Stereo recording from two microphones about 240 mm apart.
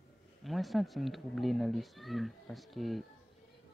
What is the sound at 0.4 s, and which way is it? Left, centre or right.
Speech, centre.